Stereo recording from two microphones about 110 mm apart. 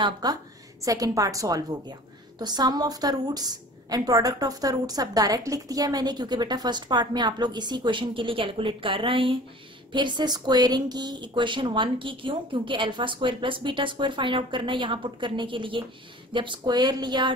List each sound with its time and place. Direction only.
0.0 s a woman's voice: 35° right (ahead or behind)